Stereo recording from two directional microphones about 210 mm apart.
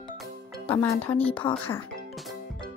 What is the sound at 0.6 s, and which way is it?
Speech, 10° left (ahead or behind).